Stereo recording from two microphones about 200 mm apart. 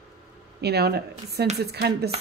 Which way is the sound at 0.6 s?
55° right (ahead or behind).